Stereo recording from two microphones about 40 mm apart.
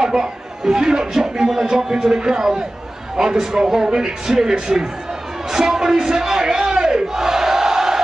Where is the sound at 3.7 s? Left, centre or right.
Centre.